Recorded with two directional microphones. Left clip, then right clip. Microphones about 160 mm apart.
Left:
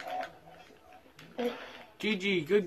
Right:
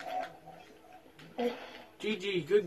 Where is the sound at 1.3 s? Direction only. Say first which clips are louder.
Even; centre (ahead or behind).